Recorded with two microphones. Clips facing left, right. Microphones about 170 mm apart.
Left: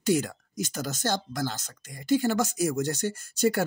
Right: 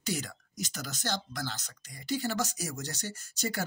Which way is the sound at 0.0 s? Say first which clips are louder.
Left 10 dB; 50° left (ahead or behind).